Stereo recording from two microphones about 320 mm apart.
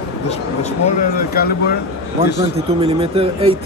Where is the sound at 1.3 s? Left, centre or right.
Left.